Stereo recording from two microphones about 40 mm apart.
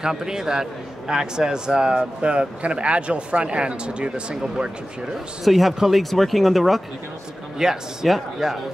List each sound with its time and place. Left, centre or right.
0.0 s a man's voice: centre
5.4 s speech: centre
7.5 s speech: centre